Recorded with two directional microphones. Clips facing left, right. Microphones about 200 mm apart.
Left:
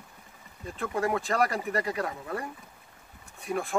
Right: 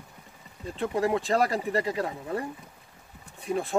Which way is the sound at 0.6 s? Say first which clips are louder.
Right 3 dB; 30° right (ahead or behind).